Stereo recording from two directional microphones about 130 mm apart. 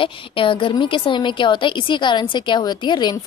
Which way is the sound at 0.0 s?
40° left (ahead or behind).